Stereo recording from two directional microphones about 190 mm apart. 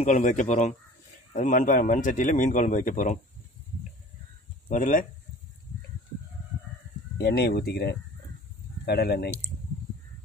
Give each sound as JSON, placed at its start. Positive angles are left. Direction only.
{"t": 0.0, "sound": "speech", "side_deg": 40}
{"t": 4.6, "sound": "speech", "side_deg": 45}
{"t": 7.2, "sound": "speech", "side_deg": 60}